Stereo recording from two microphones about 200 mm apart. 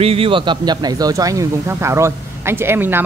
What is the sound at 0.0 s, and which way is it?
Speech, 30° right (ahead or behind).